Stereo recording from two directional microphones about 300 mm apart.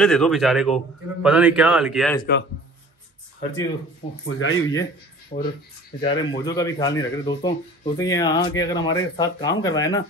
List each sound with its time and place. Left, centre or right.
0.0 s a man's voice: centre
4.3 s speech: left
5.3 s speech: left
5.9 s speech: centre